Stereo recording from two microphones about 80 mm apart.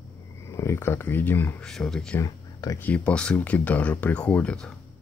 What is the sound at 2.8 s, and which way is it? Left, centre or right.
Speech, centre.